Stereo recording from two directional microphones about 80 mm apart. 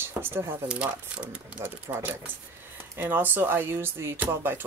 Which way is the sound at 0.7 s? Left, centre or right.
Centre.